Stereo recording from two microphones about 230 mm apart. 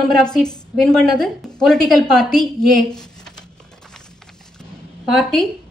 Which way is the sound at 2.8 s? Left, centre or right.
Centre.